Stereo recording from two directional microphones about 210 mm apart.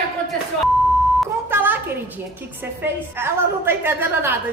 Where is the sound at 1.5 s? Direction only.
10° right (ahead or behind).